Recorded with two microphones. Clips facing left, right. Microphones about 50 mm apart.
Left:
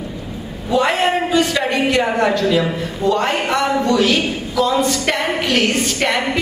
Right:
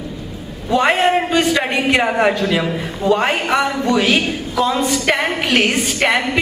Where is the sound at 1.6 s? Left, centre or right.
Centre.